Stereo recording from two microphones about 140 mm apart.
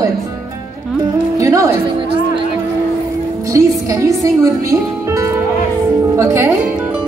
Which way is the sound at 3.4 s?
20° right (ahead or behind).